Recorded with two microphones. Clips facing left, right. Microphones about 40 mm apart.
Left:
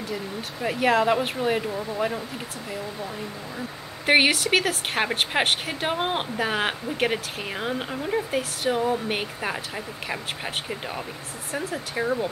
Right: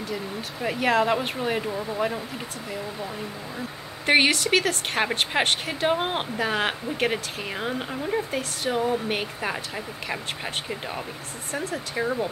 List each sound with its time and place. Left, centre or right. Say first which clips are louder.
0.1 s speech: even; centre
3.5 s speech: even; centre
11.5 s speech: even; centre